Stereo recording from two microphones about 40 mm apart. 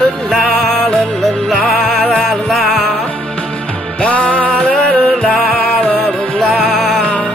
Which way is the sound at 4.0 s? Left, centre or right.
Left.